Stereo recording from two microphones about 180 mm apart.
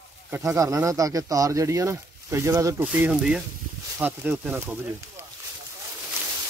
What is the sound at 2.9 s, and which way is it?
Speech, 5° right (ahead or behind).